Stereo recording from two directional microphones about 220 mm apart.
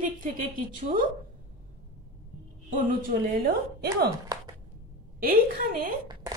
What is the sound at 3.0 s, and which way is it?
A woman's voice, 45° right (ahead or behind).